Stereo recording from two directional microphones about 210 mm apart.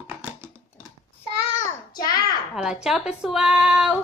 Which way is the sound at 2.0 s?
20° left (ahead or behind).